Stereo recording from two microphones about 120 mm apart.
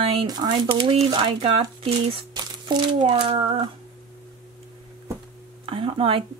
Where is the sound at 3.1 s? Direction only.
45° right (ahead or behind).